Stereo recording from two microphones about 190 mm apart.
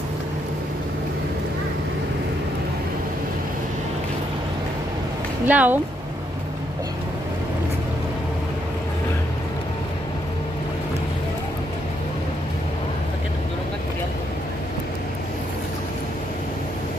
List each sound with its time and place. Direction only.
5.5 s speech: 10° right (ahead or behind)